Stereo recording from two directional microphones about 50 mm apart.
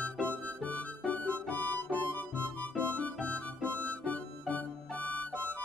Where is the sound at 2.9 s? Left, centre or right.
Left.